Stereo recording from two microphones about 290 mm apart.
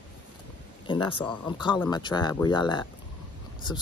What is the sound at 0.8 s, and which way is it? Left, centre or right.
Speech, centre.